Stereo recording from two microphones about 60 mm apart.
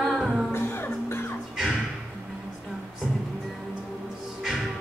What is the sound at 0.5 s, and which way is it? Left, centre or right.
Music, left.